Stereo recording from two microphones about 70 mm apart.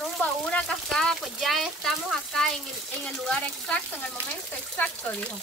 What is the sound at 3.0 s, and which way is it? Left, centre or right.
Speech, centre.